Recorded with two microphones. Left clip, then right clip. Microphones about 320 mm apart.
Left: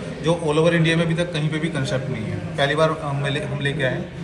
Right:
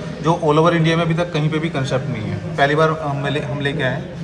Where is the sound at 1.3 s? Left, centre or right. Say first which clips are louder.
Right 4 dB; right.